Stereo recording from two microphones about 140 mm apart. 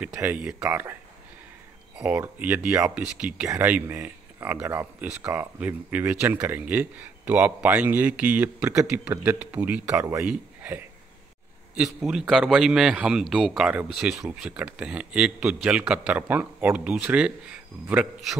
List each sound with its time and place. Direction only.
0.2 s a man's voice: 10° right (ahead or behind)
2.0 s a man's voice: 10° right (ahead or behind)